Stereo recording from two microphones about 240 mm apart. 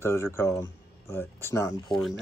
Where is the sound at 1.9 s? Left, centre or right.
Centre.